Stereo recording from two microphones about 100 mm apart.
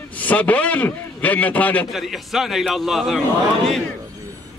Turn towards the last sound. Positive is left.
turn(degrees=0)  # may be behind; listen again after turning